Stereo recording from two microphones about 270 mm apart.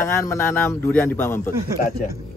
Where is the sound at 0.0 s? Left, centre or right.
Centre.